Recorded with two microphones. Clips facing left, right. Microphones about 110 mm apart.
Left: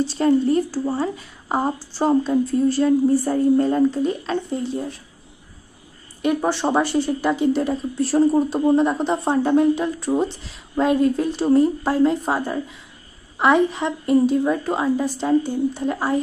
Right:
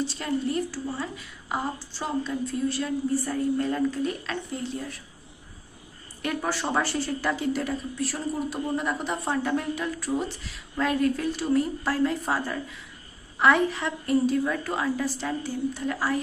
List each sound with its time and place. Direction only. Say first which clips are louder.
0.0 s a woman's voice: left 10 dB; 35° left (ahead or behind)
6.2 s speech: left 8 dB; 25° left (ahead or behind)